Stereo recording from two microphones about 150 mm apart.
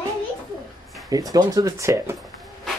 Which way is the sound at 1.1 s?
25° right (ahead or behind).